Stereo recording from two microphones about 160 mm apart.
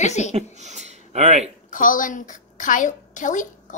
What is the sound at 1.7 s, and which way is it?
A woman's voice, 55° left (ahead or behind).